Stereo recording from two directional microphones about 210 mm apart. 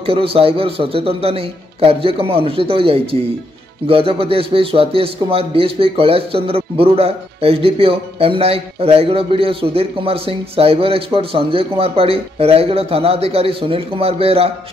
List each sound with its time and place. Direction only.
0.0 s a man's voice: 25° right (ahead or behind)